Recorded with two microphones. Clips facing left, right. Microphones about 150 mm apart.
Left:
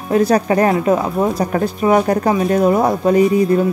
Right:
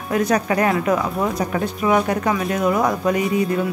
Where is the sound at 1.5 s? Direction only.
40° left (ahead or behind).